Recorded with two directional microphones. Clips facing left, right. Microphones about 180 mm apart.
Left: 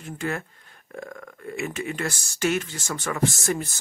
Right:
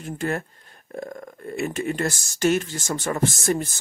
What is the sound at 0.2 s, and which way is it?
Speech, 40° right (ahead or behind).